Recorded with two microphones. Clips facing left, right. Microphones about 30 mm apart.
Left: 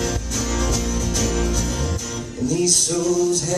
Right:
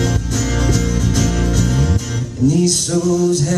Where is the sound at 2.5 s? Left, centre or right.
Right.